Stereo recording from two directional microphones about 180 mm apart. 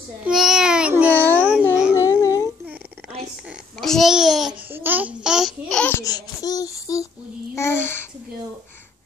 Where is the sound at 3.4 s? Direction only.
Centre (ahead or behind).